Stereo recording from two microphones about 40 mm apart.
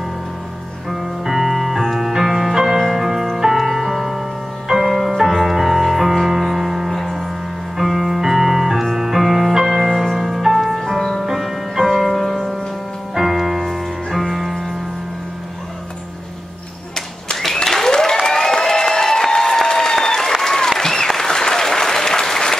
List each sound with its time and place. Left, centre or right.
0.8 s music: centre
13.1 s music: centre
17.6 s applause: centre